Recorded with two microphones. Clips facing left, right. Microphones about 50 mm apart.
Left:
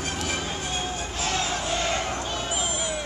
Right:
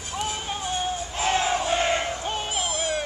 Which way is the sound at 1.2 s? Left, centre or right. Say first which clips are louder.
Right 5 dB; right.